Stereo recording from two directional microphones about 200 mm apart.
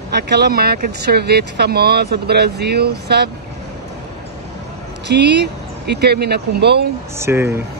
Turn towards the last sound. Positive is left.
turn(degrees=-10)  # may be behind; listen again after turning